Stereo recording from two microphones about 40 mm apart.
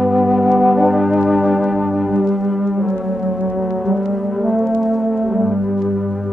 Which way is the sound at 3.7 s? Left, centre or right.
Centre.